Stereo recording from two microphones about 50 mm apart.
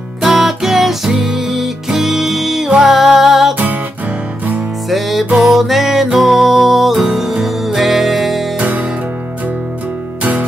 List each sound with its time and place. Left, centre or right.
0.2 s music: centre
4.8 s music: centre
8.5 s music: right